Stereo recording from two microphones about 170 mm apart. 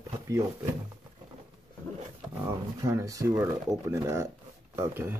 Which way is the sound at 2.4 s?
15° right (ahead or behind).